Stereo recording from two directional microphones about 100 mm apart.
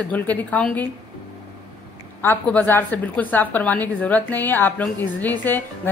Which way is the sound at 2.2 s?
20° left (ahead or behind).